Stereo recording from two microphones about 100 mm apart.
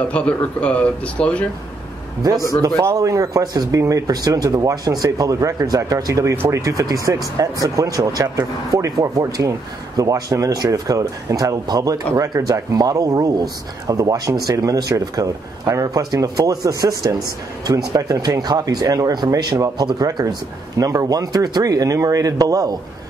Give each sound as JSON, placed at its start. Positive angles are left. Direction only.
{"t": 0.1, "sound": "speech", "side_deg": 10}
{"t": 2.8, "sound": "a man's voice", "side_deg": -30}
{"t": 6.3, "sound": "speech", "side_deg": -20}
{"t": 6.6, "sound": "a man's voice", "side_deg": -35}
{"t": 20.7, "sound": "a man's voice", "side_deg": -35}